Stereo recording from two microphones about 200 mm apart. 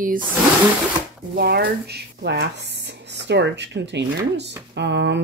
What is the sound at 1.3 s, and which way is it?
Speech, 55° right (ahead or behind).